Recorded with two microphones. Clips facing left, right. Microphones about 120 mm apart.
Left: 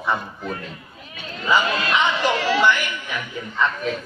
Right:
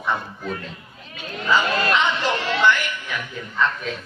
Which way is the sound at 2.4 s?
5° left (ahead or behind).